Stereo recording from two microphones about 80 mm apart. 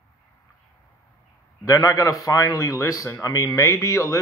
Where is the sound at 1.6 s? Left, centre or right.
Left.